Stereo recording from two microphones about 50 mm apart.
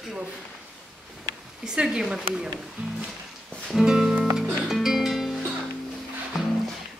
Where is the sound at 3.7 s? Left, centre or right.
Centre.